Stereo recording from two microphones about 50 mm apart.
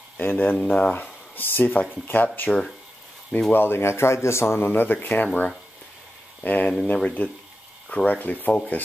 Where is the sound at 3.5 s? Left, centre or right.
Left.